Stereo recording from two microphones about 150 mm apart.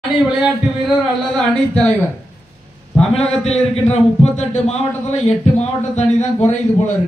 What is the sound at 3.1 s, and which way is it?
A man's voice, 45° left (ahead or behind).